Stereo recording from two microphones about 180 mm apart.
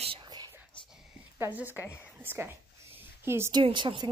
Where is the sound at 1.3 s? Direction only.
10° right (ahead or behind).